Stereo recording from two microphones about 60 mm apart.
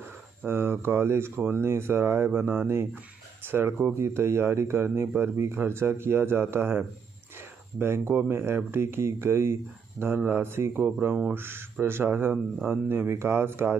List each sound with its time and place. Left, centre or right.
0.5 s speech: right
7.8 s speech: right